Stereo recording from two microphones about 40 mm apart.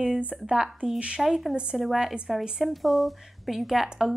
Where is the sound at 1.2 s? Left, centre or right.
Centre.